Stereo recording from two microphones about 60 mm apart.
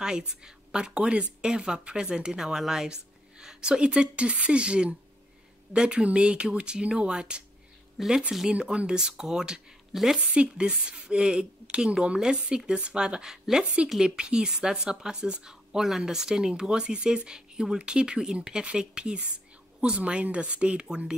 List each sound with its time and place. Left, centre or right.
0.0 s speech: centre
8.0 s speech: centre
8.5 s speech: centre